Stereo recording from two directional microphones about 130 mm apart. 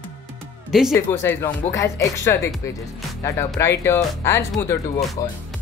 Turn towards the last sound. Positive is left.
turn(degrees=25)  # may be behind; listen again after turning